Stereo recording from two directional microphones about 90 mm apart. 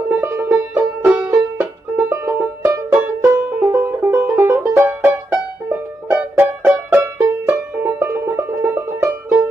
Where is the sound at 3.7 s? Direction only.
25° right (ahead or behind).